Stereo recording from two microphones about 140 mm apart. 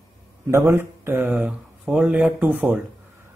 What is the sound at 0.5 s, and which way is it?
A man's voice, 15° right (ahead or behind).